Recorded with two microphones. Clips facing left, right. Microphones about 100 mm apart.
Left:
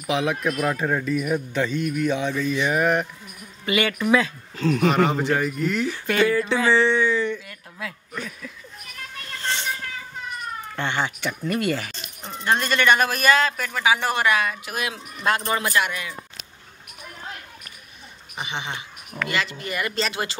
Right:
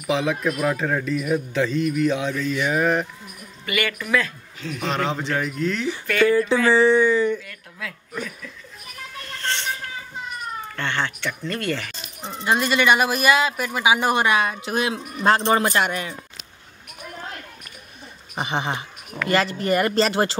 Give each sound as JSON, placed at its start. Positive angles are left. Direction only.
{"t": 0.0, "sound": "speech", "side_deg": 0}
{"t": 3.6, "sound": "speech", "side_deg": 20}
{"t": 4.6, "sound": "speech", "side_deg": 40}
{"t": 4.8, "sound": "speech", "side_deg": 5}
{"t": 6.7, "sound": "speech", "side_deg": -5}
{"t": 9.4, "sound": "vehicle", "side_deg": 15}
{"t": 10.8, "sound": "speech", "side_deg": 15}
{"t": 11.9, "sound": "speech", "side_deg": 0}
{"t": 18.3, "sound": "speech", "side_deg": -40}